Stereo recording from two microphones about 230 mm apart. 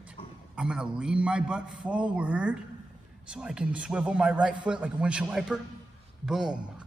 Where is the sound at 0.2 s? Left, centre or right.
Left.